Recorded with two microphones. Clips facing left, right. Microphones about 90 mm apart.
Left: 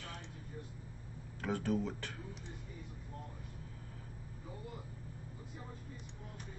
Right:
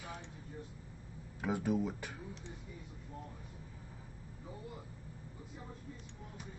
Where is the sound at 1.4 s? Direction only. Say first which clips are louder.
Right 1 dB; 15° right (ahead or behind).